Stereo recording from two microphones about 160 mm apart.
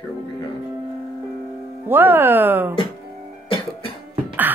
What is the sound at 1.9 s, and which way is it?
Speech, 15° right (ahead or behind).